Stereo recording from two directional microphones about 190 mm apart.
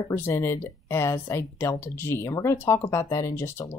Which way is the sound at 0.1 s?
15° left (ahead or behind).